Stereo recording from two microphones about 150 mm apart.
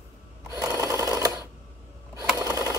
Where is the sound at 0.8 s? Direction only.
20° right (ahead or behind).